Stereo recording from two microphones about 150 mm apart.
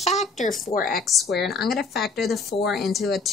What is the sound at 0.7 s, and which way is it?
Speech, 70° left (ahead or behind).